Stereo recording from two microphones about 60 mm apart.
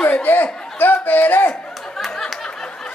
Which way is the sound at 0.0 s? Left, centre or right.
Left.